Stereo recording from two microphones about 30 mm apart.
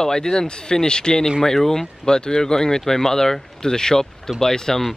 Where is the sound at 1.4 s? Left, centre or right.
Centre.